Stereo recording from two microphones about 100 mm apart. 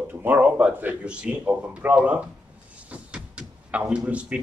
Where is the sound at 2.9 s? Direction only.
10° right (ahead or behind).